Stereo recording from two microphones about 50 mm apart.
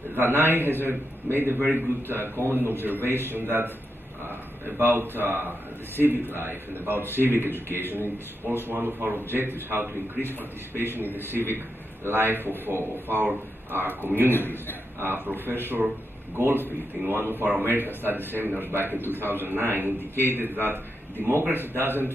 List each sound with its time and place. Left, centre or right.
0.1 s a man's voice: right
11.0 s a man's voice: left
11.3 s a man's voice: right
14.3 s a man's voice: left
15.0 s a man's voice: right